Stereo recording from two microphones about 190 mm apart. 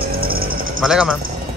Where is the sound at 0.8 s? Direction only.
5° right (ahead or behind).